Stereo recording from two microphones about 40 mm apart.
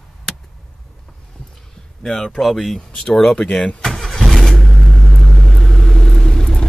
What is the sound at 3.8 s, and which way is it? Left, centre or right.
Vehicle, centre.